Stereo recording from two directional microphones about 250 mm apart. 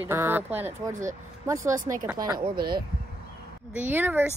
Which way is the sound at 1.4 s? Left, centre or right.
Centre.